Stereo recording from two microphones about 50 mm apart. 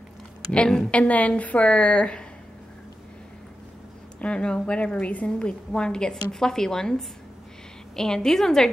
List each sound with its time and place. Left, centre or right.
0.9 s a woman's voice: left
4.2 s a woman's voice: centre